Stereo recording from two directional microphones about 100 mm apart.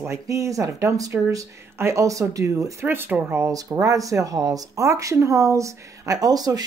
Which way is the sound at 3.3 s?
35° right (ahead or behind).